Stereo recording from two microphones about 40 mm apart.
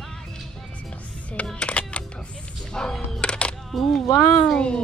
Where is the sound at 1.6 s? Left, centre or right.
Left.